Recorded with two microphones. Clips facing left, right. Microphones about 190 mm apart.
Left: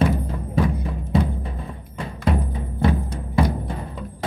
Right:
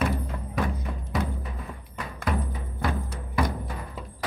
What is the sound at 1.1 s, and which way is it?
Music, 30° left (ahead or behind).